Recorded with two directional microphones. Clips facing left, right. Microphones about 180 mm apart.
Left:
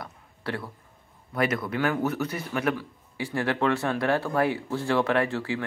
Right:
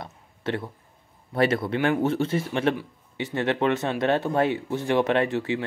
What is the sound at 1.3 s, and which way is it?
Speech, 30° right (ahead or behind).